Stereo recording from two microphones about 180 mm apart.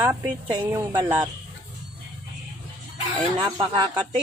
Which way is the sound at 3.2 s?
25° right (ahead or behind).